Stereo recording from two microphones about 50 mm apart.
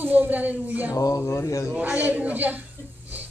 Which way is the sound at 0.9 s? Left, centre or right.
Left.